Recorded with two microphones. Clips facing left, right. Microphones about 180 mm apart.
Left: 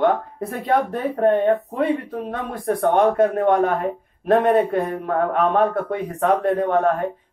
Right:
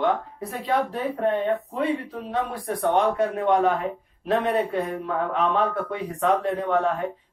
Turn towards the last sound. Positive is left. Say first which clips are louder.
# left 4 dB
turn(degrees=55)  # may be behind; listen again after turning